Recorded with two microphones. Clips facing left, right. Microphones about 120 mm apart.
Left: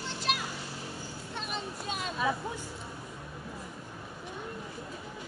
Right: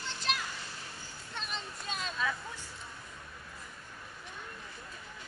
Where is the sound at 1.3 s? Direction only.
15° left (ahead or behind).